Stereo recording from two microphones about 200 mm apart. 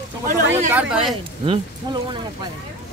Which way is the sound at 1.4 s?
25° right (ahead or behind).